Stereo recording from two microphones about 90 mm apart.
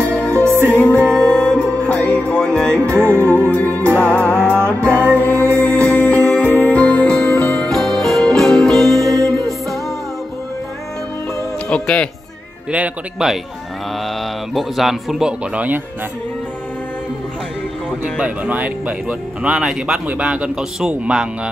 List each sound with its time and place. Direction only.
0.1 s music: 15° left (ahead or behind)
1.1 s music: 10° left (ahead or behind)
2.9 s music: 25° right (ahead or behind)
3.4 s music: 20° left (ahead or behind)
4.8 s music: 25° right (ahead or behind)
5.3 s music: 20° left (ahead or behind); by 8.8 s 5° left (ahead or behind)
9.0 s music: 40° right (ahead or behind)
9.5 s music: centre (ahead or behind)
11.7 s speech: 10° left (ahead or behind)
12.7 s speech: 15° right (ahead or behind)
14.5 s speech: centre (ahead or behind)
18.1 s speech: 15° right (ahead or behind)
19.5 s speech: 5° right (ahead or behind)